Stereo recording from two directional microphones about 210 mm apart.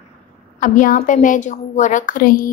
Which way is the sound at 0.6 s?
40° left (ahead or behind).